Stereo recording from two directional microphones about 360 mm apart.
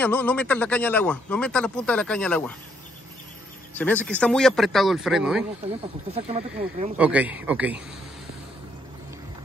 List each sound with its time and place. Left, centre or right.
0.0 s speech: centre
3.7 s speech: centre
6.1 s speech: centre
7.0 s speech: centre